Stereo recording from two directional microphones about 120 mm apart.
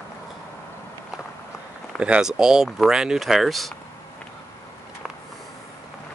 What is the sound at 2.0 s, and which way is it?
Speech, 10° right (ahead or behind).